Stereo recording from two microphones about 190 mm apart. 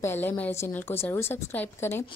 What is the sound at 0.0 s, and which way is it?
A woman's voice, 10° left (ahead or behind).